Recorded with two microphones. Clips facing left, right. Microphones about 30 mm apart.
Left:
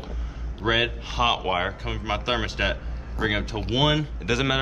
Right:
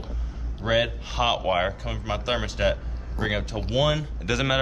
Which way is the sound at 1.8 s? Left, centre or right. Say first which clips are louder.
Left 1 dB; centre.